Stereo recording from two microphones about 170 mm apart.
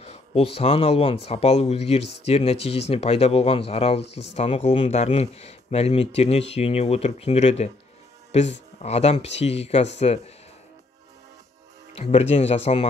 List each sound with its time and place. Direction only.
0.0 s speech: 35° left (ahead or behind)
8.8 s speech: 40° left (ahead or behind)
11.9 s speech: 40° left (ahead or behind)